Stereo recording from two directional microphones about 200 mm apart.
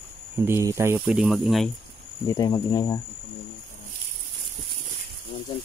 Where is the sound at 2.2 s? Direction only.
20° left (ahead or behind).